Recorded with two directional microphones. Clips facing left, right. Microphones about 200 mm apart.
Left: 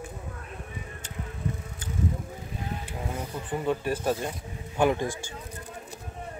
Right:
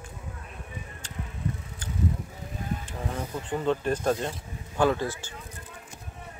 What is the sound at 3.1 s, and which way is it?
Speech, 10° left (ahead or behind).